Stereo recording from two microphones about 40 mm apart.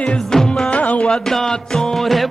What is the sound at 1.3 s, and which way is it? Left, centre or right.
Music, centre.